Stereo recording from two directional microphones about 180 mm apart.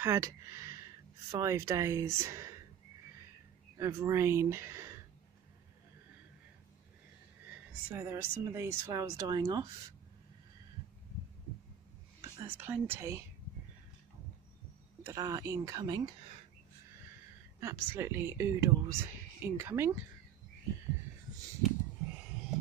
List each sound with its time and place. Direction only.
0.0 s speech: 15° right (ahead or behind)
3.7 s speech: 15° right (ahead or behind)
7.9 s speech: 15° right (ahead or behind)
12.2 s speech: 15° right (ahead or behind)
15.0 s speech: 20° right (ahead or behind)
17.6 s speech: 15° right (ahead or behind)